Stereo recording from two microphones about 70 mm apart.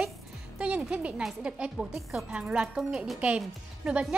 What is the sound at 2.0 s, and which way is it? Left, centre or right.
Speech, centre.